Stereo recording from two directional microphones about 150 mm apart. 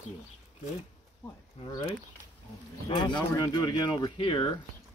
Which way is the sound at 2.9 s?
30° left (ahead or behind).